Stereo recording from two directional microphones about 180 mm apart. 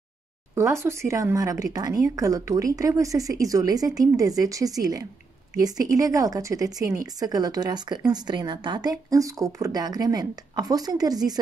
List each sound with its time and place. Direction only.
0.6 s a woman's voice: 15° right (ahead or behind)